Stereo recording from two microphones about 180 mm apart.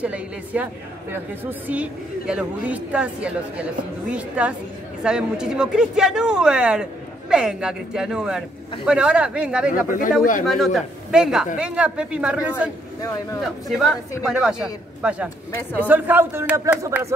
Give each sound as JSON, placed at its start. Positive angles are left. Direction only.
{"t": 0.0, "sound": "speech", "side_deg": -10}
{"t": 13.0, "sound": "speech", "side_deg": 20}
{"t": 13.7, "sound": "speech", "side_deg": 0}